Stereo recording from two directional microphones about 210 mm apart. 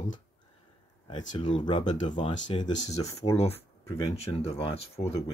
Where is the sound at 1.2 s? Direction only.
35° left (ahead or behind).